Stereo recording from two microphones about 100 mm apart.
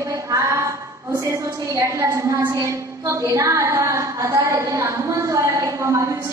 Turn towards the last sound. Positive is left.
turn(degrees=-30)  # may be behind; listen again after turning